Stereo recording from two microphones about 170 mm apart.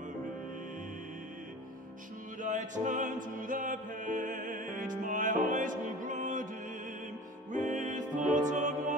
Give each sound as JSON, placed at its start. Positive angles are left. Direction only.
{"t": 2.4, "sound": "music", "side_deg": -45}
{"t": 7.5, "sound": "music", "side_deg": -50}